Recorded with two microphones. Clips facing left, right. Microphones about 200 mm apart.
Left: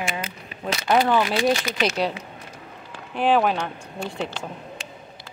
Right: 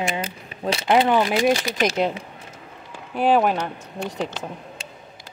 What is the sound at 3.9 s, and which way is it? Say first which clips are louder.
Speech: right 2 dB; 20° right (ahead or behind).